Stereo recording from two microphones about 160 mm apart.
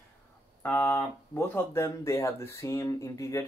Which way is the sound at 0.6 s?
15° left (ahead or behind).